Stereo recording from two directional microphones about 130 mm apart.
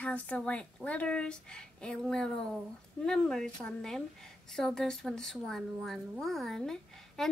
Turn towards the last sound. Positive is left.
turn(degrees=5)  # may be behind; listen again after turning